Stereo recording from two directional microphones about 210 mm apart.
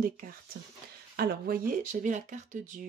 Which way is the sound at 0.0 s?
45° right (ahead or behind).